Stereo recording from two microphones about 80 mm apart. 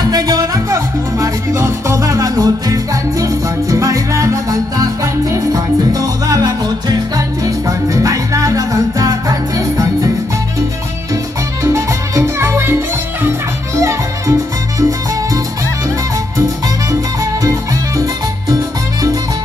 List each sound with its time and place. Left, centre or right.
0.1 s music: right
0.7 s music: right
11.6 s salsa music: right
13.7 s music: right
16.9 s music: right